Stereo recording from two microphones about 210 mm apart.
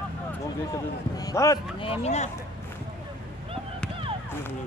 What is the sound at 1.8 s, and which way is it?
Speech, 30° left (ahead or behind).